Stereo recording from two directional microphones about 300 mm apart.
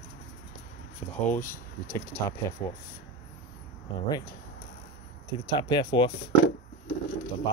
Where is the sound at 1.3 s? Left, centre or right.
Centre.